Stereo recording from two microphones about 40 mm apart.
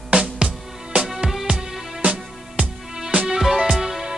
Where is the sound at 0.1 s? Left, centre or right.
Right.